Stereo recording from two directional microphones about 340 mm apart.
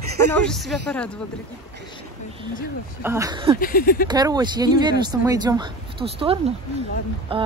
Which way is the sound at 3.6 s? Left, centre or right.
Left.